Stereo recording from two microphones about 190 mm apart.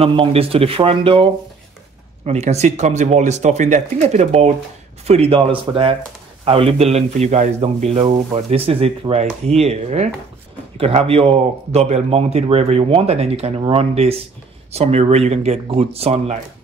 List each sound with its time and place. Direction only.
0.0 s speech: 30° right (ahead or behind)